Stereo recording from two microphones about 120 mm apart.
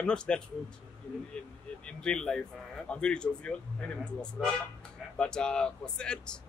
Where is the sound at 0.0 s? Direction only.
10° left (ahead or behind).